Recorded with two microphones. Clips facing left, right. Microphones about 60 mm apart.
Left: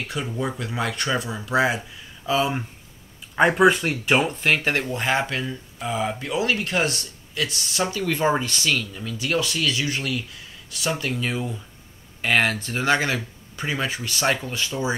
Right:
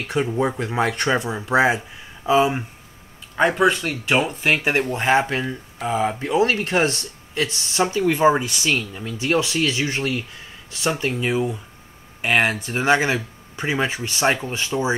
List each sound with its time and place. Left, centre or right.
0.3 s speech: right
3.3 s speech: centre
4.6 s speech: right
8.7 s speech: right